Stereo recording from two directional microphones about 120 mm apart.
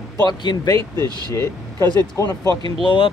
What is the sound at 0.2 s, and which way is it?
Speech, 35° left (ahead or behind).